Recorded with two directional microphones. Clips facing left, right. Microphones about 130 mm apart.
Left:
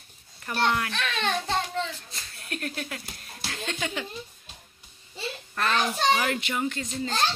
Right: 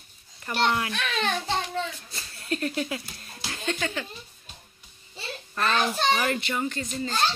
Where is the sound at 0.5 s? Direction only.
10° right (ahead or behind).